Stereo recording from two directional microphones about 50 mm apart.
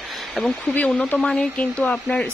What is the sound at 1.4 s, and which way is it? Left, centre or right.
Speech, left.